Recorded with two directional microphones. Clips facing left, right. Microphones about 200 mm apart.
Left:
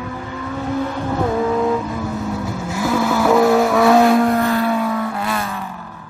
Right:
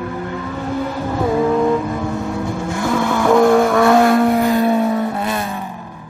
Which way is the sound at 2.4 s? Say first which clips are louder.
Right 2 dB; 5° left (ahead or behind).